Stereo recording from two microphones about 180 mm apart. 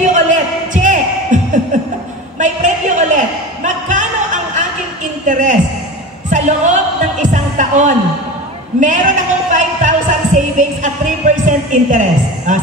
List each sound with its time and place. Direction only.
0.0 s a sound: 45° right (ahead or behind)
6.3 s music: 45° right (ahead or behind)
8.7 s speech: 45° right (ahead or behind)